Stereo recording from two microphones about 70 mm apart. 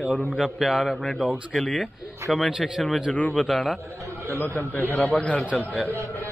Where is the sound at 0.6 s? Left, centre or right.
Centre.